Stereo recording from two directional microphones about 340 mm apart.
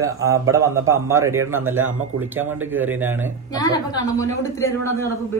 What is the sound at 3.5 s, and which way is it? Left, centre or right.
A woman's voice, centre.